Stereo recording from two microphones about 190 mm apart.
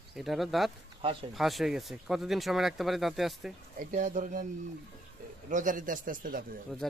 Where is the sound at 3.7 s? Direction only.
40° right (ahead or behind).